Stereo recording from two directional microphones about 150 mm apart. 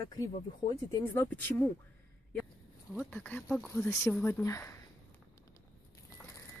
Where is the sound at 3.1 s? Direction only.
10° left (ahead or behind).